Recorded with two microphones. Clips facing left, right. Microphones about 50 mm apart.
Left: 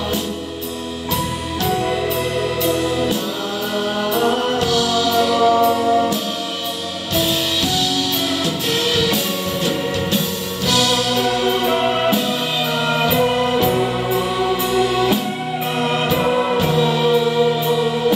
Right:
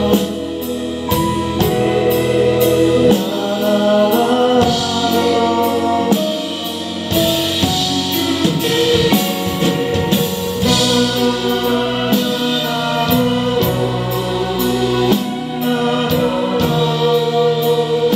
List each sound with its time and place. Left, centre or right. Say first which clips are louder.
1.7 s music: right 4 dB; centre
4.0 s music: right 5 dB; centre
4.4 s music: right 5 dB; centre
5.4 s music: left 1 dB; centre
5.9 s music: right 1 dB; right
9.0 s music: right 4 dB; centre
10.1 s music: right 4 dB; centre
13.1 s music: right 3 dB; centre
16.1 s music: right 1 dB; centre